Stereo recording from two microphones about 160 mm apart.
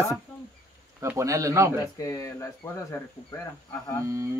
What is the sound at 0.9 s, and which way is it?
Speech, 15° right (ahead or behind).